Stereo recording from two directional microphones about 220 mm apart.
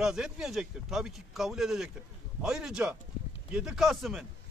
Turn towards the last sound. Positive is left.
turn(degrees=0)  # may be behind; listen again after turning